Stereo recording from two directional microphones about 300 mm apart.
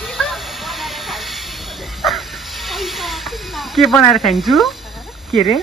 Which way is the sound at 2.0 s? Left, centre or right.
Centre.